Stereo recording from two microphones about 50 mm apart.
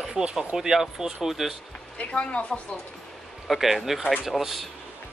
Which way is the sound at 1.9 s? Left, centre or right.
Left.